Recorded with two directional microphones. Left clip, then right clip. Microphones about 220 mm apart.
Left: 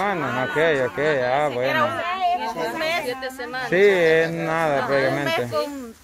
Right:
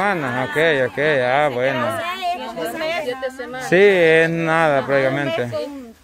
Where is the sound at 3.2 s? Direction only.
35° left (ahead or behind).